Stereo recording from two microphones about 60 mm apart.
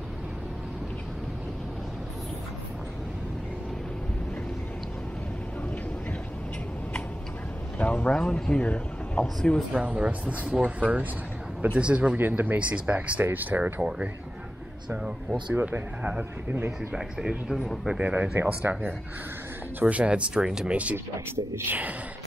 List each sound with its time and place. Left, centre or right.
7.8 s a sound: left
8.1 s speech: centre
9.2 s speech: centre
9.8 s speech: centre
12.2 s speech: right
12.5 s speech: right
13.7 s speech: centre
15.5 s speech: right
16.0 s speech: centre
17.5 s speech: centre
17.9 s speech: centre